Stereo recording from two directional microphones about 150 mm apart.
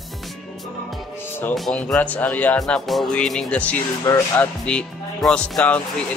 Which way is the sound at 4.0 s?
20° left (ahead or behind).